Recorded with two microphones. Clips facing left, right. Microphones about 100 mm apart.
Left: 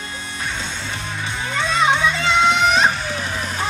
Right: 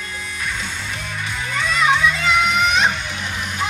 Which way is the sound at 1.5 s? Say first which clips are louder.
Even; 25° left (ahead or behind).